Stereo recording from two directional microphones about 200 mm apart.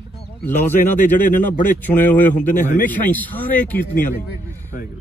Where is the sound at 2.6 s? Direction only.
40° left (ahead or behind).